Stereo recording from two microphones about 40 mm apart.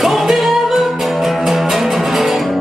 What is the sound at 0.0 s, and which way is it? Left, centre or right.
Music, centre.